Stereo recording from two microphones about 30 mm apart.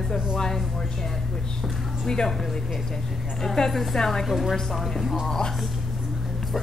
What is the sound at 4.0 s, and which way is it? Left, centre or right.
Speech, centre.